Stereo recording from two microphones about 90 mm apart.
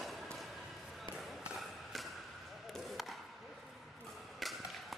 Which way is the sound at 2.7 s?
Centre (ahead or behind).